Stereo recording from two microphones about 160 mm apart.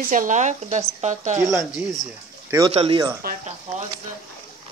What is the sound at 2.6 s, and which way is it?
Speech, 35° right (ahead or behind).